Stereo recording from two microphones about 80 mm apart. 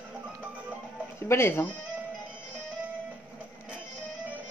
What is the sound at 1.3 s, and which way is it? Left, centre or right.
Speech, left.